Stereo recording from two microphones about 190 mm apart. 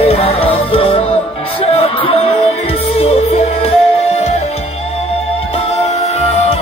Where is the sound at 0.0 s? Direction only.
30° left (ahead or behind).